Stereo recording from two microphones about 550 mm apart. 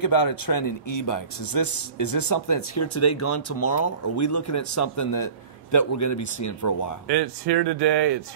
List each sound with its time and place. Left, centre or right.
0.0 s a man's voice: left
7.1 s speech: right